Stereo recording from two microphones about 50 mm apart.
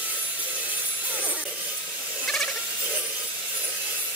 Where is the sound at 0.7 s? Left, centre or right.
Right.